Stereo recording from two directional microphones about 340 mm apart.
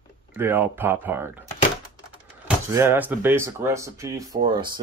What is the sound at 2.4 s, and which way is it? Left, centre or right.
Speech, centre.